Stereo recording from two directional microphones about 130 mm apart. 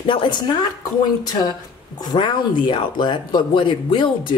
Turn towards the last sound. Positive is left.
turn(degrees=35)  # may be behind; listen again after turning